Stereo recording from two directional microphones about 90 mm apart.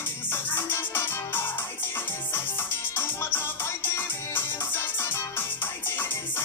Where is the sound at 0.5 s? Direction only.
25° left (ahead or behind).